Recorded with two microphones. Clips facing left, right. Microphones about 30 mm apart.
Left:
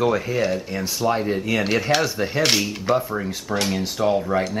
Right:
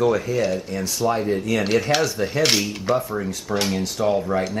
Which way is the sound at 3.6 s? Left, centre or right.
Centre.